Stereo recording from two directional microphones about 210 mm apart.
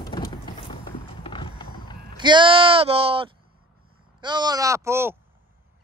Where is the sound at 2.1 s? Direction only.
20° right (ahead or behind).